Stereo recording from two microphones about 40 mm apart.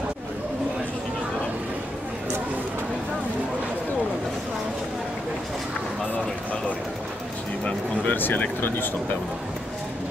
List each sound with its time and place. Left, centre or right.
8.0 s speech: left
8.3 s speech: left